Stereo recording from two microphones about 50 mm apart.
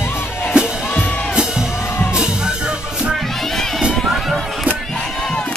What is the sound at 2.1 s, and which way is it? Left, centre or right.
Music, centre.